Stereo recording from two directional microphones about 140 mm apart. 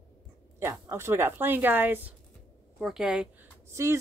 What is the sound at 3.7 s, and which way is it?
Speech, 20° right (ahead or behind).